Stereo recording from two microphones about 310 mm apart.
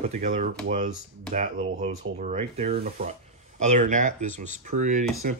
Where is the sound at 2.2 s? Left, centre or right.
Right.